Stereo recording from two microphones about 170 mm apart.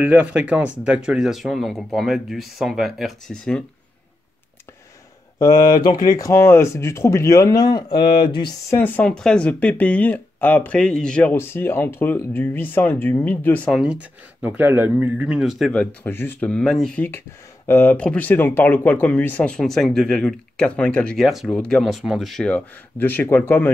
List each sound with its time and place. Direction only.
0.0 s speech: 10° right (ahead or behind)
5.4 s speech: 25° left (ahead or behind)
8.6 s speech: 10° left (ahead or behind)
13.7 s speech: 5° right (ahead or behind); by 23.7 s 10° left (ahead or behind)